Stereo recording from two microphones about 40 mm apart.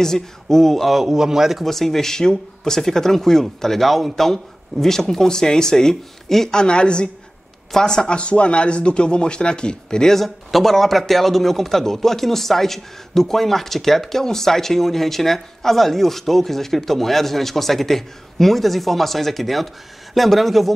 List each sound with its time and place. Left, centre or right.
0.0 s a man's voice: centre
1.6 s speech: centre
6.6 s a man's voice: left
10.1 s a man's voice: centre